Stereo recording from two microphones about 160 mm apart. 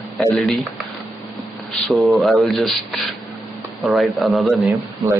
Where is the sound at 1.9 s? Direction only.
Centre (ahead or behind).